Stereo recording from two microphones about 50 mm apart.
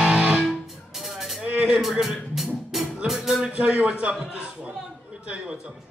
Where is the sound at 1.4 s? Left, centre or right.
Right.